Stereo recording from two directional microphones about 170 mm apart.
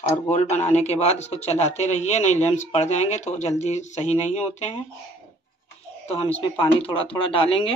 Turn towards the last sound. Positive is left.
turn(degrees=35)  # may be behind; listen again after turning